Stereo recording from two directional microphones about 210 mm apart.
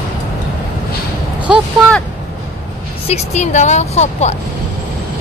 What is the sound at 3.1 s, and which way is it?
A woman's voice, 30° left (ahead or behind).